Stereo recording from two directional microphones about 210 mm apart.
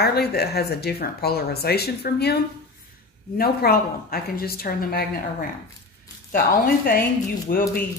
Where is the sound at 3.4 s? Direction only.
45° left (ahead or behind).